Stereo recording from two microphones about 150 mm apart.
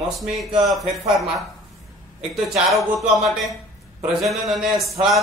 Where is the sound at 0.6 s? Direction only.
Centre (ahead or behind).